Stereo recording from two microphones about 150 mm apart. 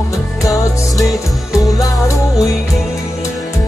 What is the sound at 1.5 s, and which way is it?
Music, 20° left (ahead or behind).